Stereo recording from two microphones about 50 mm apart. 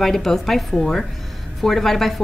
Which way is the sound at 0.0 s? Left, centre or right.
Centre.